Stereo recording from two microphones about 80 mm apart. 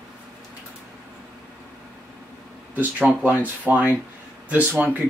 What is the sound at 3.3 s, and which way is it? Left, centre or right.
Speech, centre.